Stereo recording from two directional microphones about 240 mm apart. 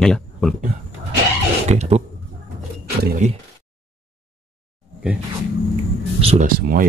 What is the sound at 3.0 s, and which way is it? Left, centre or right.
Speech, right.